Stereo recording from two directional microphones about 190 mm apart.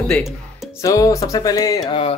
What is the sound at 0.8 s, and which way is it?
Music, 15° left (ahead or behind).